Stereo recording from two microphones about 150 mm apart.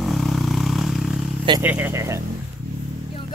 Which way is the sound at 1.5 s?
10° right (ahead or behind).